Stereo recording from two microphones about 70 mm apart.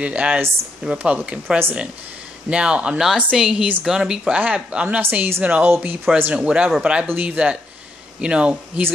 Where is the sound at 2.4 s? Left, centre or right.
Centre.